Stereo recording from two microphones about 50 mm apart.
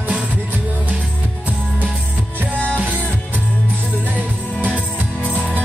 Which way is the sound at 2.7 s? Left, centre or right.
Right.